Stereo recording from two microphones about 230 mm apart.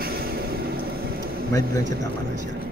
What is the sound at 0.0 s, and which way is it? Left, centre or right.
Vehicle, right.